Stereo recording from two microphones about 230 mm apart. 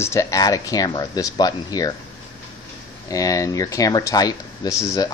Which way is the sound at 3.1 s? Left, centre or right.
Centre.